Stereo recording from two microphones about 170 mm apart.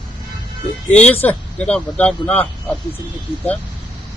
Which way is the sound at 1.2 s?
10° left (ahead or behind).